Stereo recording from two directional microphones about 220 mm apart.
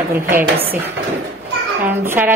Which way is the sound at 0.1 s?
10° right (ahead or behind).